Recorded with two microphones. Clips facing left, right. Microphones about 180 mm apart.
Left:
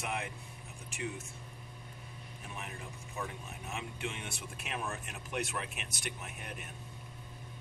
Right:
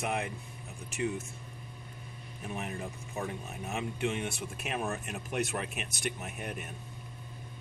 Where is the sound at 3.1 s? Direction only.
45° right (ahead or behind).